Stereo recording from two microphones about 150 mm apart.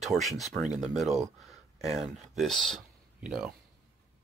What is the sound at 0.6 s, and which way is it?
Speech, 55° right (ahead or behind).